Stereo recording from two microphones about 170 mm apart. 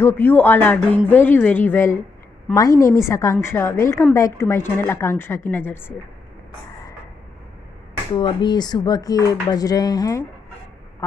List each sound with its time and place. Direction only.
0.0 s a woman's voice: 10° left (ahead or behind)
8.1 s speech: 30° left (ahead or behind)